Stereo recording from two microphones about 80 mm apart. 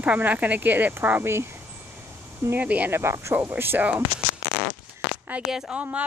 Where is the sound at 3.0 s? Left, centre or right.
Right.